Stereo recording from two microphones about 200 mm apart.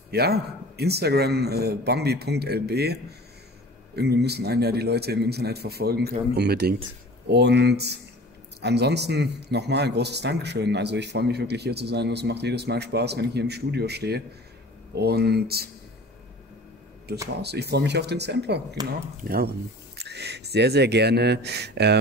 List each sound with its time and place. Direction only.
0.1 s a man's voice: 50° right (ahead or behind)
17.4 s a man's voice: 55° right (ahead or behind)
18.8 s speech: 20° right (ahead or behind)
19.2 s a man's voice: 50° right (ahead or behind)